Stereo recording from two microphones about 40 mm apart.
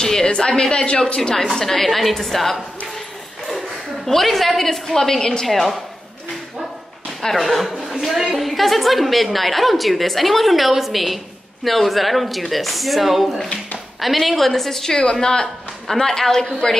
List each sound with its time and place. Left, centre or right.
0.0 s a sound: centre
0.3 s a woman's voice: centre
1.4 s a woman's voice: centre
7.2 s a woman's voice: centre